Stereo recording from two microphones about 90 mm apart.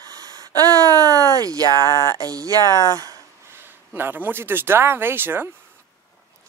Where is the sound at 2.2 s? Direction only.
45° right (ahead or behind).